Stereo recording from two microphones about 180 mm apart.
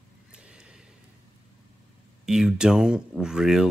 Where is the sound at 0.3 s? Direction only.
5° right (ahead or behind).